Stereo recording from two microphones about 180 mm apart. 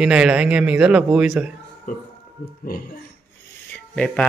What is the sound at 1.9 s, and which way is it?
Speech, 50° left (ahead or behind).